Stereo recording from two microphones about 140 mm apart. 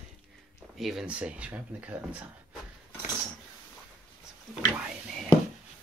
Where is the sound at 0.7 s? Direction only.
Centre (ahead or behind).